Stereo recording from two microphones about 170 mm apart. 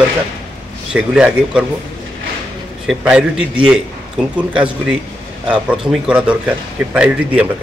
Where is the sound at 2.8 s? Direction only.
5° right (ahead or behind).